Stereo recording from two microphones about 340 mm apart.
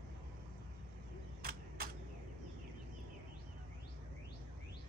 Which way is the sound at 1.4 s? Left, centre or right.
Right.